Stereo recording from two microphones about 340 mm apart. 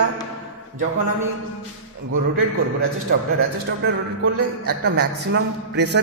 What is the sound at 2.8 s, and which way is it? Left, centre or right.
A man's voice, right.